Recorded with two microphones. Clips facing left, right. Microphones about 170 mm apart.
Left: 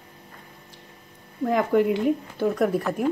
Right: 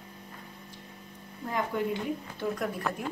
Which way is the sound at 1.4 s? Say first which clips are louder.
Left 10 dB; 65° left (ahead or behind).